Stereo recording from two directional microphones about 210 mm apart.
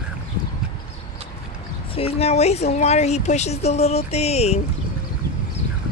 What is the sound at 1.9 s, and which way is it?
Speech, 30° left (ahead or behind).